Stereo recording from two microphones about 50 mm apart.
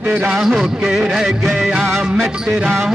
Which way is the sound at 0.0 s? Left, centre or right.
Centre.